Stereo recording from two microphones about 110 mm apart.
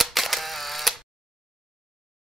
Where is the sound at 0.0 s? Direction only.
Centre (ahead or behind).